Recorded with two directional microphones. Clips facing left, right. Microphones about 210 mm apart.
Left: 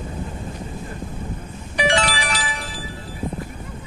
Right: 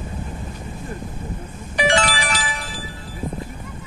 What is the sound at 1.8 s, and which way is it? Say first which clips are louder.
Music: right 1 dB; 45° right (ahead or behind).